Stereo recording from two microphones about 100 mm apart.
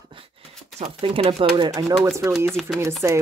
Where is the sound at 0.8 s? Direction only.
70° right (ahead or behind); by 1.7 s 55° right (ahead or behind).